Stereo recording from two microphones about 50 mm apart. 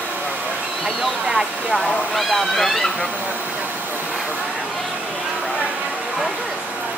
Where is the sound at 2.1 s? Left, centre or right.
Centre.